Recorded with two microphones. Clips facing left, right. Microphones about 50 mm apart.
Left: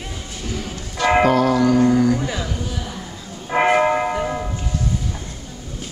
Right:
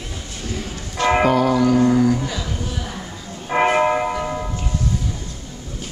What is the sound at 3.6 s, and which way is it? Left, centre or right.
Church bell, centre.